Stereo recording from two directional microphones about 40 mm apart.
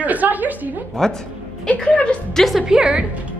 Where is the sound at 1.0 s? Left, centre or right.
Centre.